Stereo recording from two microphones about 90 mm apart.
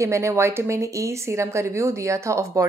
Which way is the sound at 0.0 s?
35° right (ahead or behind).